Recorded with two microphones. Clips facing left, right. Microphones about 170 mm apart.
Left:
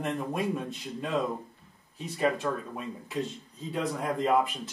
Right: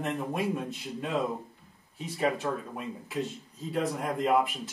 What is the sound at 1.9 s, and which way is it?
Speech, 5° right (ahead or behind).